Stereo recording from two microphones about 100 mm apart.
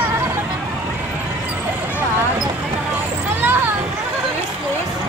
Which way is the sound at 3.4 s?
20° right (ahead or behind).